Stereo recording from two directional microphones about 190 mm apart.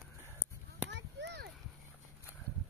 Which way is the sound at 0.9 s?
65° right (ahead or behind).